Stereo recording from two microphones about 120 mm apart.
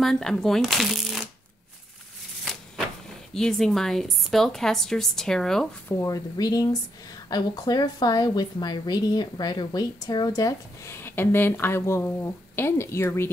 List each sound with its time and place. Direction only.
0.0 s a woman's voice: 5° left (ahead or behind)
2.5 s vehicle: 5° left (ahead or behind)
3.3 s a woman's voice: 5° left (ahead or behind)
5.9 s a woman's voice: 25° left (ahead or behind)
11.0 s speech: 15° left (ahead or behind)